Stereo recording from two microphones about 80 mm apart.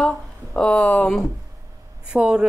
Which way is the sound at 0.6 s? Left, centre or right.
Centre.